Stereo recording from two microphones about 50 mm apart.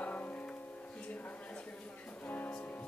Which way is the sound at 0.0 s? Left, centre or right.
Left.